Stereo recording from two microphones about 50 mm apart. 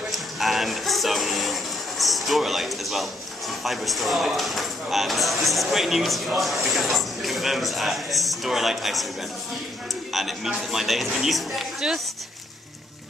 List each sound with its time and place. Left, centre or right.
0.1 s music: centre
10.1 s speech: centre
11.8 s speech: centre